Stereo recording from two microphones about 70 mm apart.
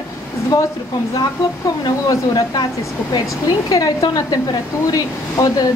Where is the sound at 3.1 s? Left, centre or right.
Left.